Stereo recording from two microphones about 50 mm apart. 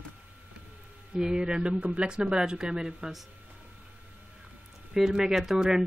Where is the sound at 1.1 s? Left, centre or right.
Centre.